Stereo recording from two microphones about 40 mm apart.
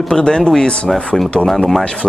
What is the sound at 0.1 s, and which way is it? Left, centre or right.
Speech, centre.